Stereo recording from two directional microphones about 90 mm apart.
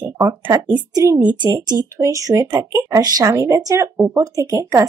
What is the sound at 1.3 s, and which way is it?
Speech, 50° right (ahead or behind).